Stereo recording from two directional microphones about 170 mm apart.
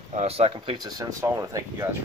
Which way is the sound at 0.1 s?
40° right (ahead or behind).